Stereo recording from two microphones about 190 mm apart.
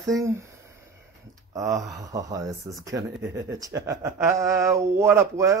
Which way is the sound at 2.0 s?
20° right (ahead or behind).